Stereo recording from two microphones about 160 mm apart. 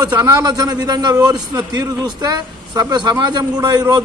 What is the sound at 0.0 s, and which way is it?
A man's voice, 25° right (ahead or behind).